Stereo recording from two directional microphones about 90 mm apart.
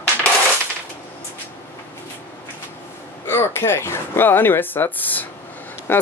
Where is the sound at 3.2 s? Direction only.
25° left (ahead or behind).